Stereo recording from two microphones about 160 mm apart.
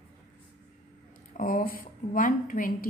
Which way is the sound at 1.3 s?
60° left (ahead or behind).